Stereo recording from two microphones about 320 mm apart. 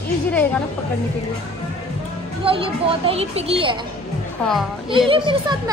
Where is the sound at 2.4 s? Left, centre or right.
Centre.